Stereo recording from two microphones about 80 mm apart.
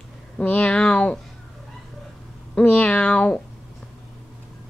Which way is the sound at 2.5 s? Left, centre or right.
Centre.